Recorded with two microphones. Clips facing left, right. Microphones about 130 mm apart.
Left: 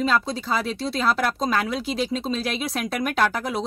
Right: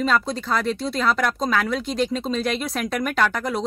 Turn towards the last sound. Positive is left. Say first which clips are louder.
# right 1 dB
turn(degrees=5)  # may be behind; listen again after turning